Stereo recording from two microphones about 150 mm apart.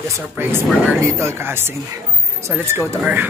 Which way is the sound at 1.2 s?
15° right (ahead or behind).